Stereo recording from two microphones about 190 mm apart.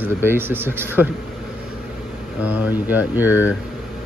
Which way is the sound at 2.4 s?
5° right (ahead or behind).